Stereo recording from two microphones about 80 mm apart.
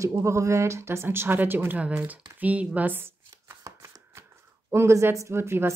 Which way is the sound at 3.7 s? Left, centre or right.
Right.